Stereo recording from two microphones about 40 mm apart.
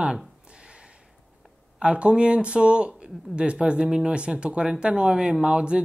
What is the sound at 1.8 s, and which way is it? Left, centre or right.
Speech, right.